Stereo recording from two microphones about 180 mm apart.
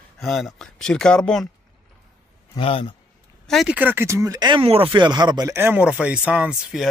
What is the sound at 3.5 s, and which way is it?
Speech, 5° right (ahead or behind).